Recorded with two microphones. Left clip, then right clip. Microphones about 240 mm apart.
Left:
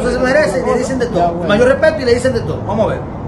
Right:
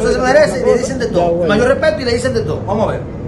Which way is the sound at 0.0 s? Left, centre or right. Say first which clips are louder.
Right 2 dB; centre.